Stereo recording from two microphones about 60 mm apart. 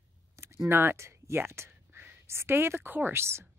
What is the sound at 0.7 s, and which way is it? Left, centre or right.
Speech, right.